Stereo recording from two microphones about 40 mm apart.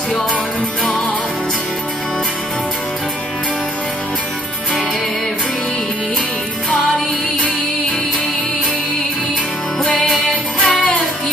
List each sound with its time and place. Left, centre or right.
9.9 s music: centre
10.6 s music: left